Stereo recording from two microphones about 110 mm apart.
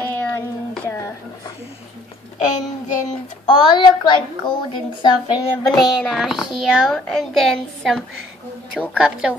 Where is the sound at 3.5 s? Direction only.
45° left (ahead or behind).